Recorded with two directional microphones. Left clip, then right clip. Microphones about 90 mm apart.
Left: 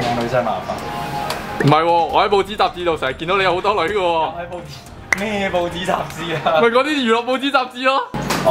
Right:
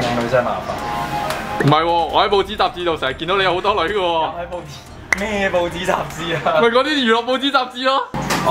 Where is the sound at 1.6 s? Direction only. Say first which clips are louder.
Left 1 dB; 15° left (ahead or behind).